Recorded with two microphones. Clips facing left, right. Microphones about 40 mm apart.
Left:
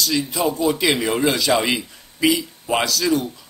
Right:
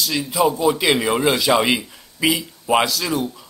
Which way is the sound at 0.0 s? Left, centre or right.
Centre.